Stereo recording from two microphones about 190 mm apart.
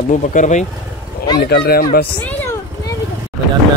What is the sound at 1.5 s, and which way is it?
Speech, 55° left (ahead or behind).